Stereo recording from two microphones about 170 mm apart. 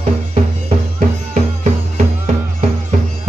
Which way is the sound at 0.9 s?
50° right (ahead or behind).